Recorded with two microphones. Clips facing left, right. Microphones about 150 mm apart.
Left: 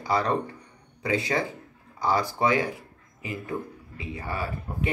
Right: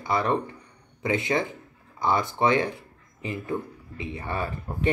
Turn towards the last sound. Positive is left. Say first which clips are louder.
# right 2 dB
turn(degrees=-30)  # may be behind; listen again after turning